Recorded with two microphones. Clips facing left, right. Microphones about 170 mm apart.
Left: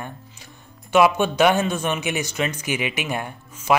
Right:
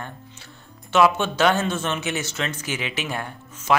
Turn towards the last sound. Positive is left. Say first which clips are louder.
# left 2 dB
turn(degrees=15)  # may be behind; listen again after turning